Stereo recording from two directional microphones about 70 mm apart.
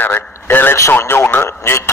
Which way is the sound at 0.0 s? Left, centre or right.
Left.